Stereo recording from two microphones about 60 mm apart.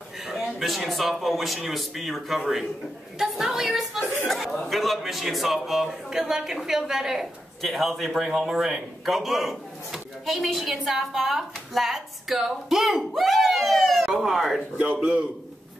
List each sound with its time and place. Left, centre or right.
0.5 s a man's voice: centre
14.8 s a man's voice: right